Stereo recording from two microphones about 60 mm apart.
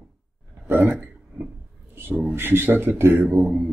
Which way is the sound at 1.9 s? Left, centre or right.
Right.